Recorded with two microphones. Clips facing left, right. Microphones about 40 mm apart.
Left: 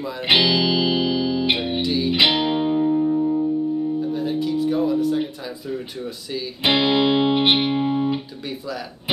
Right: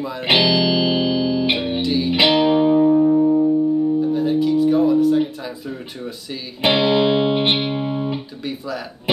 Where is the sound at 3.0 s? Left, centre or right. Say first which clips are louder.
Right 5 dB; right.